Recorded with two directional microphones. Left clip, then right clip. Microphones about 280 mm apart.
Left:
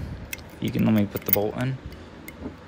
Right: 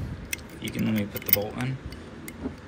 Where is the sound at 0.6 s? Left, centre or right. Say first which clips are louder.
Left 7 dB; left.